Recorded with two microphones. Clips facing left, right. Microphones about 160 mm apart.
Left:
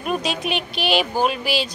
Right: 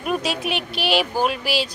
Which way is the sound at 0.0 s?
5° right (ahead or behind).